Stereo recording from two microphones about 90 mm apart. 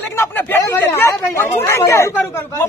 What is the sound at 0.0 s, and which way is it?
Chatter, 25° left (ahead or behind).